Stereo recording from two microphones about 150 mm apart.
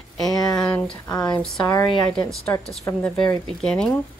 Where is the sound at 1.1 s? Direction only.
25° left (ahead or behind).